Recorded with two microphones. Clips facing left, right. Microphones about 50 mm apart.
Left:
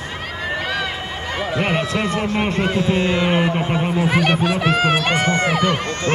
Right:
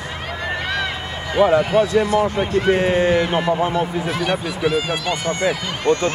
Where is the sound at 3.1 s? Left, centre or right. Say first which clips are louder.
Even; left.